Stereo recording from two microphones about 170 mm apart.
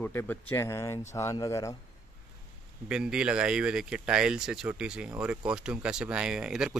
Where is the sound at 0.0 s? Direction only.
15° left (ahead or behind).